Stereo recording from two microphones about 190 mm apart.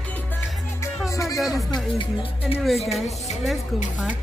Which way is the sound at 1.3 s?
Centre (ahead or behind).